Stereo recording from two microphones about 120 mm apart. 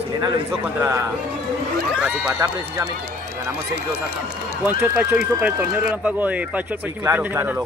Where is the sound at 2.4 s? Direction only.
30° right (ahead or behind).